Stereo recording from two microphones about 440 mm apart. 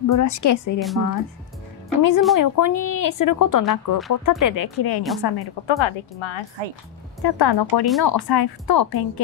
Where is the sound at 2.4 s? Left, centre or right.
Left.